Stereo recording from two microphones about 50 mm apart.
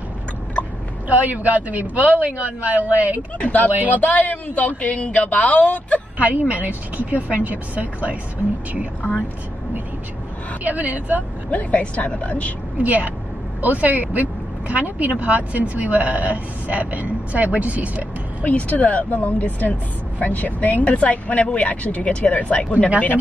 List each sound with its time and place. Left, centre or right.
1.0 s speech: right
3.3 s speech: left
6.1 s speech: right
10.6 s speech: right
11.5 s speech: left
12.7 s speech: right
18.4 s speech: left